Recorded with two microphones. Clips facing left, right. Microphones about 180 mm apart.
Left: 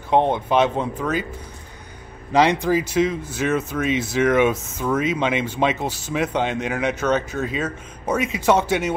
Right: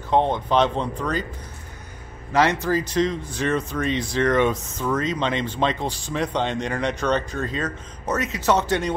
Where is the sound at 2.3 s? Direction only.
15° left (ahead or behind).